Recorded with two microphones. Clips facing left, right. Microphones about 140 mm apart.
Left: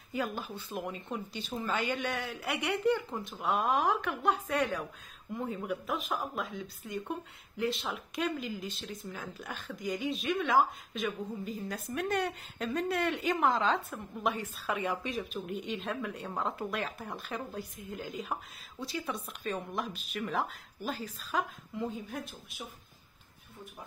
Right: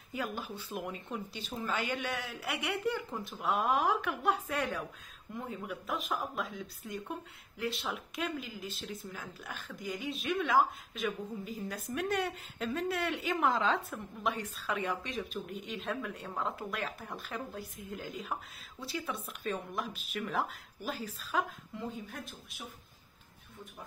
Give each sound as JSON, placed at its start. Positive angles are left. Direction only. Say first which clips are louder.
{"t": 0.3, "sound": "speech", "louder": "left 1 dB", "side_deg": -10}
{"t": 5.7, "sound": "speech", "louder": "left 2 dB", "side_deg": 0}